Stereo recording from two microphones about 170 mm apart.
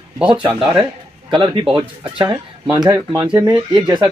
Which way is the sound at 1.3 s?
30° right (ahead or behind).